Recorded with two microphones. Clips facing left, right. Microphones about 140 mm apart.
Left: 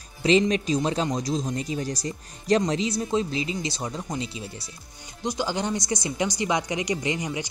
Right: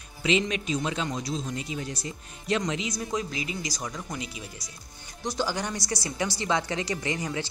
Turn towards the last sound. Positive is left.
turn(degrees=20)  # may be behind; listen again after turning